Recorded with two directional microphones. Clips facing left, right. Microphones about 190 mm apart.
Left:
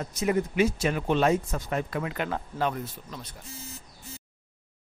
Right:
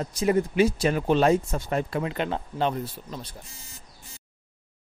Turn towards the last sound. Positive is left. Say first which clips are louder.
# right 4 dB
turn(degrees=-25)  # may be behind; listen again after turning